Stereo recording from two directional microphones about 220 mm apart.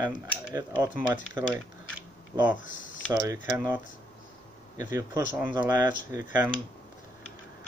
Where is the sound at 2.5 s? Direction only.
35° left (ahead or behind).